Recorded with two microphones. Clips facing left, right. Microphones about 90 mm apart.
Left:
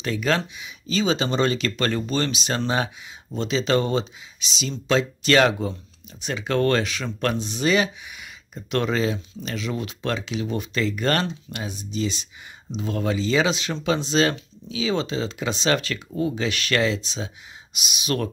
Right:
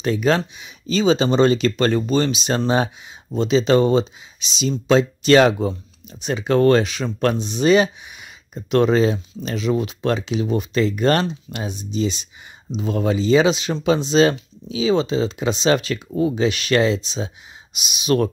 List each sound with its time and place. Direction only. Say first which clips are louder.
0.0 s speech: right 5 dB; 25° right (ahead or behind)